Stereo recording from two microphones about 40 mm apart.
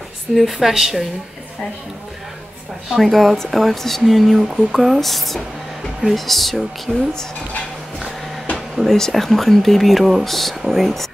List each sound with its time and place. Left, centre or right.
0.3 s speech: centre
2.9 s speech: centre
8.5 s speech: centre